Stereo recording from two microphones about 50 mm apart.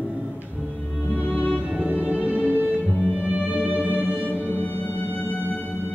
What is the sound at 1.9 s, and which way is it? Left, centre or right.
Music, right.